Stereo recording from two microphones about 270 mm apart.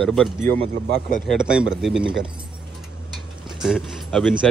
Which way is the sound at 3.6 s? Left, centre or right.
Centre.